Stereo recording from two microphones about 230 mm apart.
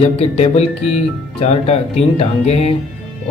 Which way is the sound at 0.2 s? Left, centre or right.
Left.